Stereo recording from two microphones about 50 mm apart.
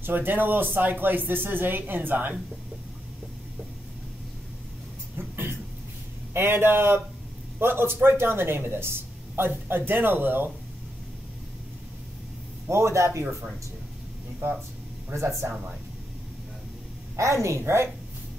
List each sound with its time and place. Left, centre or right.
0.0 s speech: right
5.1 s a sound: right
6.3 s speech: right
12.6 s speech: right
15.1 s speech: right
17.2 s speech: right